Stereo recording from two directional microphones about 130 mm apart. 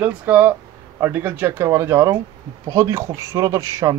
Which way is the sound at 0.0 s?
10° right (ahead or behind).